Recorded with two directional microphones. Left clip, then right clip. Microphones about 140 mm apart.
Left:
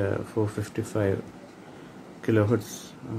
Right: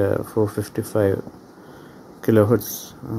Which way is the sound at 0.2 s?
50° right (ahead or behind).